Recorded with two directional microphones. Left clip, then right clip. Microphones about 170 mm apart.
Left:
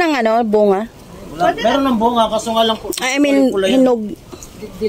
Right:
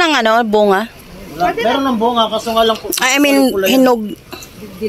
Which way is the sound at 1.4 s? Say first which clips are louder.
Even; 30° left (ahead or behind).